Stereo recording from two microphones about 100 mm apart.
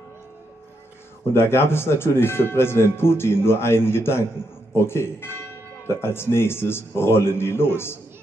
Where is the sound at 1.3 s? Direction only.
25° left (ahead or behind).